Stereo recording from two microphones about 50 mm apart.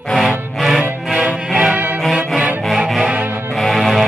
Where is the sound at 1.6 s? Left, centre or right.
Right.